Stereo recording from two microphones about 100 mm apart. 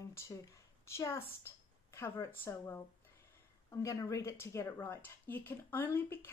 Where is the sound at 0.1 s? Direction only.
30° left (ahead or behind).